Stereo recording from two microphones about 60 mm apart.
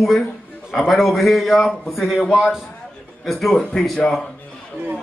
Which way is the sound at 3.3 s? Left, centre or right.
Centre.